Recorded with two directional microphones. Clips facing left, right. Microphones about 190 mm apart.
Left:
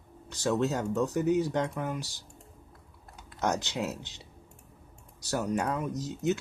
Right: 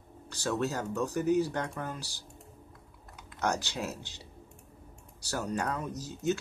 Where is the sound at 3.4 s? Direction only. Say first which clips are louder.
Left 2 dB; 20° left (ahead or behind).